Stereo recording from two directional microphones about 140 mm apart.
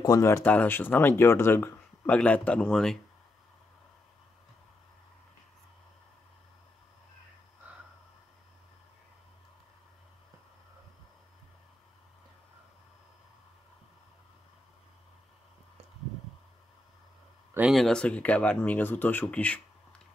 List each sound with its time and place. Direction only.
0.0 s speech: 20° left (ahead or behind); by 3.0 s 5° left (ahead or behind)
7.7 s a sound: 10° right (ahead or behind)
17.6 s speech: centre (ahead or behind)